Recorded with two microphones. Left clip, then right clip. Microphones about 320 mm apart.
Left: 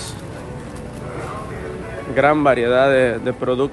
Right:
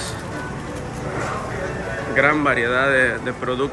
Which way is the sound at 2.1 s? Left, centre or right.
Centre.